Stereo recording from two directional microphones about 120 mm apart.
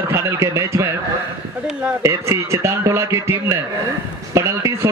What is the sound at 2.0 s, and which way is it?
A man's voice, 25° right (ahead or behind).